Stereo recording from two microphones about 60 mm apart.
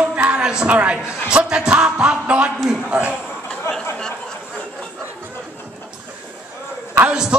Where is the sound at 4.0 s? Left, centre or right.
Centre.